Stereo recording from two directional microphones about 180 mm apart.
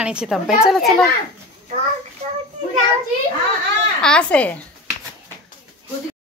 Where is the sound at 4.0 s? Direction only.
5° left (ahead or behind).